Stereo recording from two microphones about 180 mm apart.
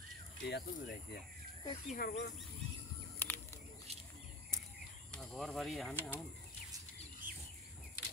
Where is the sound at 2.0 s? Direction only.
60° left (ahead or behind).